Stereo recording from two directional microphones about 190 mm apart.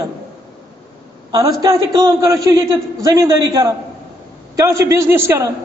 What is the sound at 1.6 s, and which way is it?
A man's voice, 20° right (ahead or behind).